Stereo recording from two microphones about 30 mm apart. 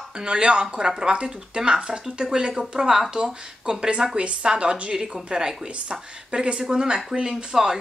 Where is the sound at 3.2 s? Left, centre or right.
Right.